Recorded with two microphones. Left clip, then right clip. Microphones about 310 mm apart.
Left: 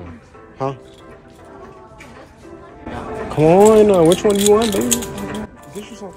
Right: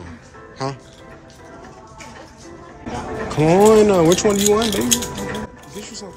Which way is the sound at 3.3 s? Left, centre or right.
Centre.